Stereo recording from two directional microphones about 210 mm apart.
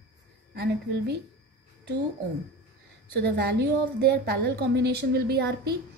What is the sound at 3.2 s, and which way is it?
A woman's voice, 50° right (ahead or behind).